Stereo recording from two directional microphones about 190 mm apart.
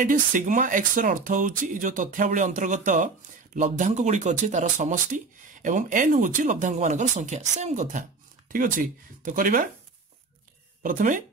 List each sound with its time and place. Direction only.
0.0 s speech: 45° right (ahead or behind)
10.8 s speech: 45° right (ahead or behind)